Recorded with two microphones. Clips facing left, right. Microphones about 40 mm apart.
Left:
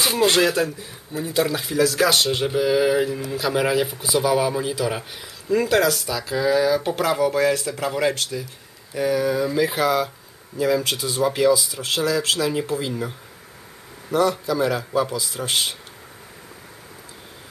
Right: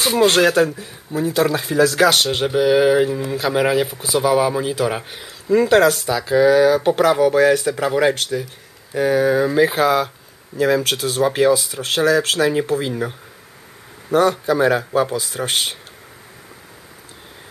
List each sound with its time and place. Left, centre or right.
0.3 s speech: right
1.5 s speech: right
3.4 s speech: right
5.1 s speech: right
14.1 s speech: right